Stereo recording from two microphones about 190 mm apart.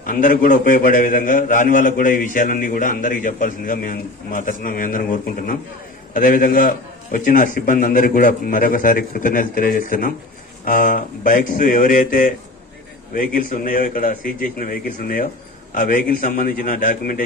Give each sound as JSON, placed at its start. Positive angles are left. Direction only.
{"t": 0.0, "sound": "a man's voice", "side_deg": 45}